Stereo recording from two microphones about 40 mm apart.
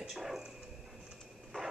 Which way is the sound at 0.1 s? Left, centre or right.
Centre.